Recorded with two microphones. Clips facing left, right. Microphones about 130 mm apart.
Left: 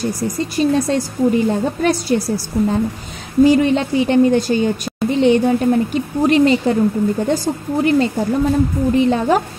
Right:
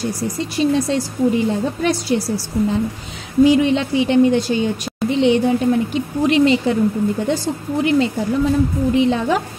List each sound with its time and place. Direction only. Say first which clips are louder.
0.0 s a woman's voice: left 2 dB; 45° left (ahead or behind)